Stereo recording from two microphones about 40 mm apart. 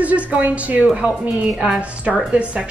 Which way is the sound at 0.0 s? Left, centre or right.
Right.